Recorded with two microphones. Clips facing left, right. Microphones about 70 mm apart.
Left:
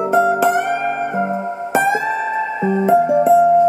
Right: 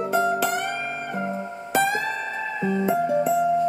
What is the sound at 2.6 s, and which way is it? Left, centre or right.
Music, centre.